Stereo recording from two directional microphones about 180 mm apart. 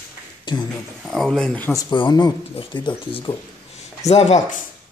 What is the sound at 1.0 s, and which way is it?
Speech, 5° left (ahead or behind).